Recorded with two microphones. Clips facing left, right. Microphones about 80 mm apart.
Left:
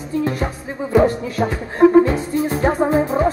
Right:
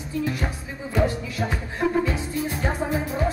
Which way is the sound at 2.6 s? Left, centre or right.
Left.